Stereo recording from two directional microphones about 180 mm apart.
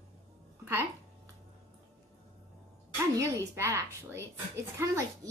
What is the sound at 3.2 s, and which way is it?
A woman's voice, 15° right (ahead or behind).